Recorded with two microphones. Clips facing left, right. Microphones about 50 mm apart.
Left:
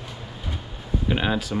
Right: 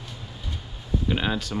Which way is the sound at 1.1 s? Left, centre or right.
Centre.